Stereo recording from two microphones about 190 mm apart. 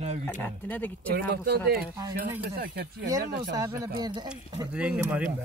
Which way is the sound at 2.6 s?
60° right (ahead or behind).